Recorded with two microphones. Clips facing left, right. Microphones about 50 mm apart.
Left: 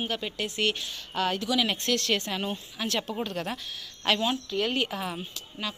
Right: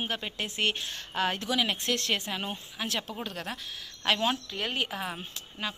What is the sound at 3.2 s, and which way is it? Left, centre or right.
Speech, centre.